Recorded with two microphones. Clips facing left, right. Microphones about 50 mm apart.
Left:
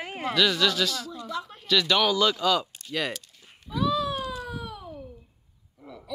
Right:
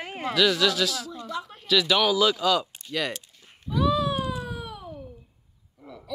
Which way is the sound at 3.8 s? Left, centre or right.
Centre.